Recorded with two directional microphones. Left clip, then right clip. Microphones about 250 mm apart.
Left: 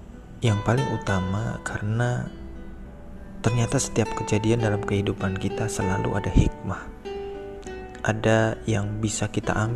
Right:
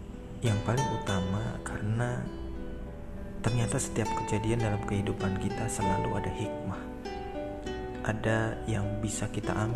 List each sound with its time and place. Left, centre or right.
0.4 s speech: left
3.4 s speech: centre
8.0 s speech: left